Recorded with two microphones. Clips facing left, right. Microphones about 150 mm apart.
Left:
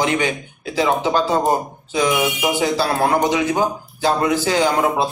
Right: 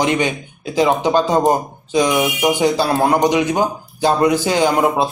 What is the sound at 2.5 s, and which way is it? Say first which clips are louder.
A man's voice: right 1 dB; 20° right (ahead or behind).